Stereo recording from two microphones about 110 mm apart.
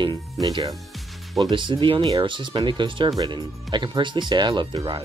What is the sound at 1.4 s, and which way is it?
Speech, 45° right (ahead or behind).